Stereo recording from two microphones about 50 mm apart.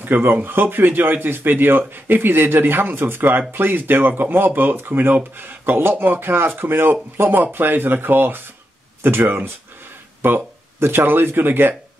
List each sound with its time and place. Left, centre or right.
0.0 s speech: right